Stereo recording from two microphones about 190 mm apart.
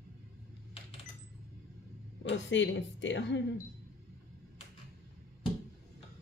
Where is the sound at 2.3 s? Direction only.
75° left (ahead or behind).